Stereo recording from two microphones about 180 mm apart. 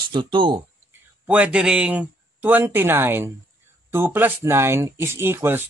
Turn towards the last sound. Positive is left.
turn(degrees=-10)  # may be behind; listen again after turning